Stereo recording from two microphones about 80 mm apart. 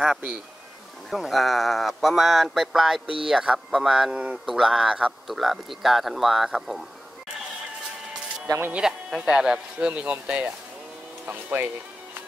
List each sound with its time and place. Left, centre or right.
0.0 s speech: centre
8.7 s speech: centre